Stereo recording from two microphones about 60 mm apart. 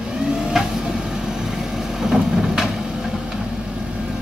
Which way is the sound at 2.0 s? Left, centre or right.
Centre.